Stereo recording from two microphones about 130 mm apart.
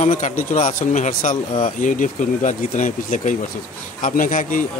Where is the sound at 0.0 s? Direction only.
65° left (ahead or behind).